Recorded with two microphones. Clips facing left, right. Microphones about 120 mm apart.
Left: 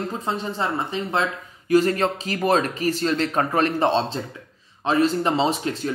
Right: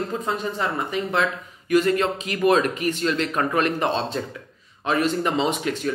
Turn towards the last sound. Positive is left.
turn(degrees=30)  # may be behind; listen again after turning